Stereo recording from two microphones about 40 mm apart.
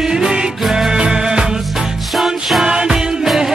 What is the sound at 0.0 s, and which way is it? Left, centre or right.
Music, centre.